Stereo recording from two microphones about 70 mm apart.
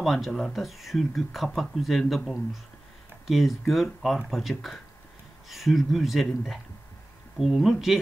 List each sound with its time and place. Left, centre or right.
0.0 s speech: centre